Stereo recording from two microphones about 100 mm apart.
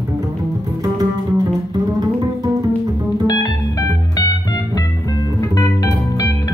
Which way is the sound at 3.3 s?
40° left (ahead or behind).